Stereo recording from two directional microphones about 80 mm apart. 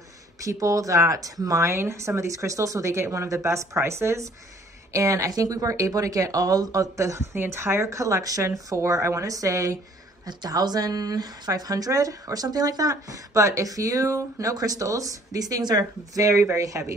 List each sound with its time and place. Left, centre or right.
0.4 s a woman's voice: right
10.2 s speech: right